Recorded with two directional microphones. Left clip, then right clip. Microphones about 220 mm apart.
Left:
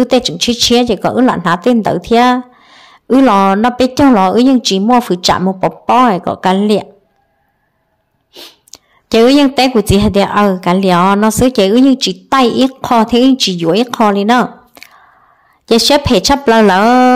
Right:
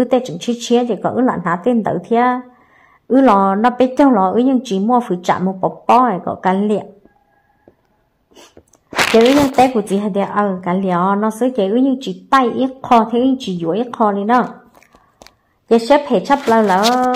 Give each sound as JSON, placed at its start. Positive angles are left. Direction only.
{"t": 0.0, "sound": "a woman's voice", "side_deg": 30}
{"t": 9.6, "sound": "a woman's voice", "side_deg": 35}